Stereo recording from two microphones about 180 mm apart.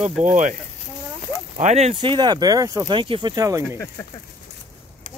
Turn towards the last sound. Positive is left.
turn(degrees=-20)  # may be behind; listen again after turning